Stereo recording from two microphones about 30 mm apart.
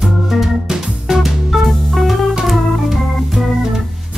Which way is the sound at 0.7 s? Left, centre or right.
Centre.